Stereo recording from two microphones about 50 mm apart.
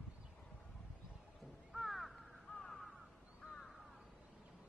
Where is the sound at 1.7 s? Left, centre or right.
Centre.